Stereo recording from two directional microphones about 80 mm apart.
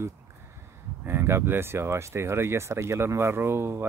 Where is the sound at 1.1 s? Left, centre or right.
Right.